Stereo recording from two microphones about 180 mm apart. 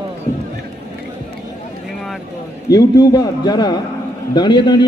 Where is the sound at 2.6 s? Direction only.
20° left (ahead or behind).